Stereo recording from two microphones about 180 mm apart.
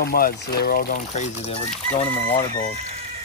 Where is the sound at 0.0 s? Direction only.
55° left (ahead or behind); by 1.6 s 40° left (ahead or behind).